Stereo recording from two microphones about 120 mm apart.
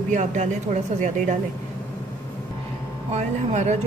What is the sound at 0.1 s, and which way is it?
Speech, 90° right.